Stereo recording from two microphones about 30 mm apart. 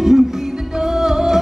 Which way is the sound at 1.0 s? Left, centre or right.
Centre.